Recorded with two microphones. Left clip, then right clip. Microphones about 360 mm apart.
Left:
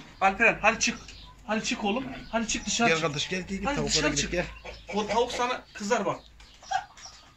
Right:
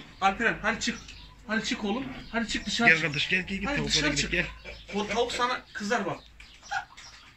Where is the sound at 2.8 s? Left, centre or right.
Left.